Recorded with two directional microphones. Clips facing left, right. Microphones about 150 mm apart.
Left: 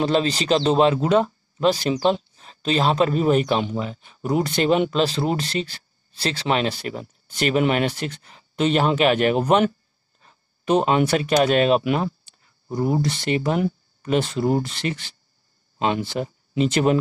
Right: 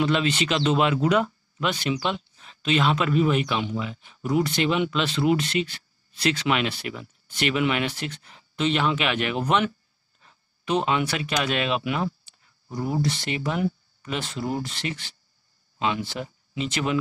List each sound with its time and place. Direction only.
0.0 s speech: 35° left (ahead or behind)